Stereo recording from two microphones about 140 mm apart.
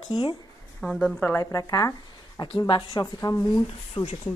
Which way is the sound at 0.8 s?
Centre (ahead or behind).